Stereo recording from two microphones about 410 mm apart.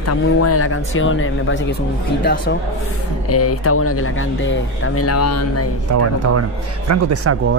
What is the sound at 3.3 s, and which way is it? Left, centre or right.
Speech, left.